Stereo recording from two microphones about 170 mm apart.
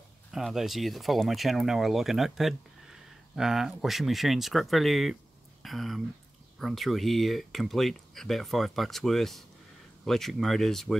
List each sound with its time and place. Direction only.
0.3 s speech: centre (ahead or behind)